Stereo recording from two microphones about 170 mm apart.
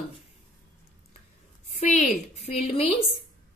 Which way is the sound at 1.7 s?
45° left (ahead or behind).